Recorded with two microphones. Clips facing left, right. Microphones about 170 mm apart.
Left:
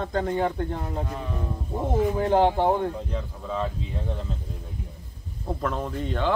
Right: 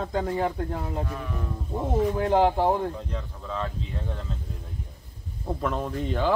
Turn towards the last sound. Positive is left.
turn(degrees=0)  # may be behind; listen again after turning